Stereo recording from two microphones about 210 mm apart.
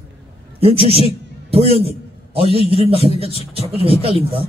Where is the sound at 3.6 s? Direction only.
30° right (ahead or behind).